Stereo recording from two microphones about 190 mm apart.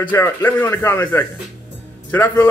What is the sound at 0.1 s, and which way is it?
A man's voice, 10° left (ahead or behind).